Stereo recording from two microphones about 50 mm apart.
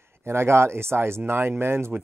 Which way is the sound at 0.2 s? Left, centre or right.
Right.